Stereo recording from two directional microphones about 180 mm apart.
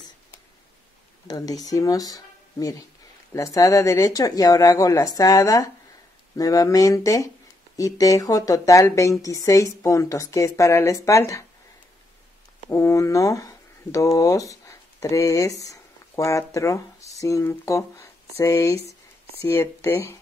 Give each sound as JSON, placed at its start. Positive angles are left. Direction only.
{"t": 1.2, "sound": "a woman's voice", "side_deg": 20}
{"t": 12.6, "sound": "a woman's voice", "side_deg": 15}